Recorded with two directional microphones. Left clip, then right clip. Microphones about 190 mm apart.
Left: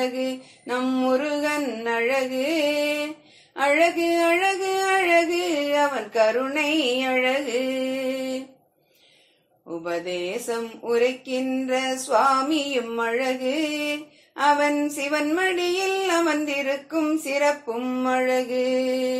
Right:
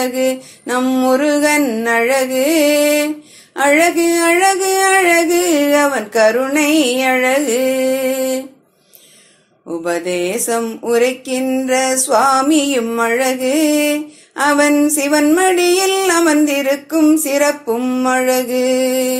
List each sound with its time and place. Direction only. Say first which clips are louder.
0.2 s speech: right 12 dB; 45° right (ahead or behind)
9.7 s speech: right 9 dB; 45° right (ahead or behind)